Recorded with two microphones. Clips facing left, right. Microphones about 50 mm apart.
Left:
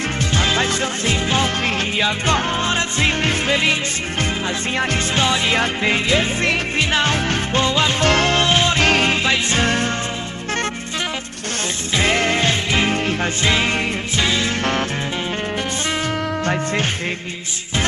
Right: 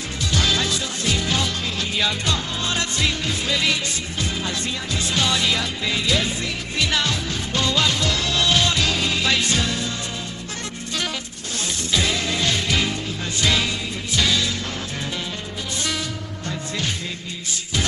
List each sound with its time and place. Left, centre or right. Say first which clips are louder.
0.3 s music: left 2 dB; left
3.2 s music: left 6 dB; left
5.1 s music: left 2 dB; left
8.0 s music: left 6 dB; left
8.8 s music: left 7 dB; left
9.2 s music: left 2 dB; left
9.6 s music: left 6 dB; left
11.9 s music: left 6 dB; left
12.9 s music: left 8 dB; left
13.4 s music: left 1 dB; left
16.4 s music: left 4 dB; left